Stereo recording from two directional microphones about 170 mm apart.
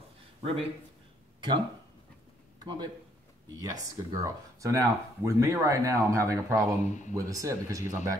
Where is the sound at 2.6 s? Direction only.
25° right (ahead or behind).